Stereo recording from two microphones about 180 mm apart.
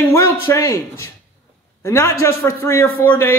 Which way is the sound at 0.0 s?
20° left (ahead or behind).